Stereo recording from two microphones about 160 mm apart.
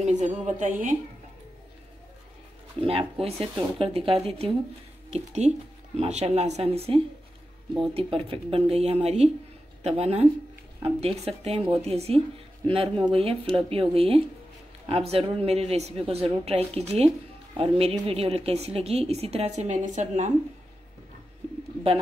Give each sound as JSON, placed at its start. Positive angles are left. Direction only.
{"t": 0.0, "sound": "a woman's voice", "side_deg": -50}
{"t": 2.8, "sound": "a woman's voice", "side_deg": -35}